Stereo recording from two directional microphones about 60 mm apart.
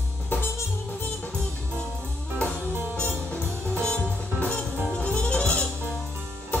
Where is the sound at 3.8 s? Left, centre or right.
Centre.